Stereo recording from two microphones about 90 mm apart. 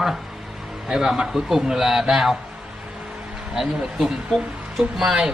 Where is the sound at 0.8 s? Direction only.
5° right (ahead or behind).